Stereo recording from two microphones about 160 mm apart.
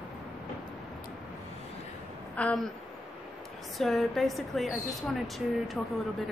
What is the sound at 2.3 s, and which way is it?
Speech, 5° left (ahead or behind).